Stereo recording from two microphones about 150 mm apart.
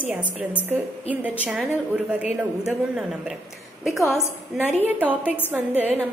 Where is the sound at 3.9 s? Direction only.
Centre (ahead or behind).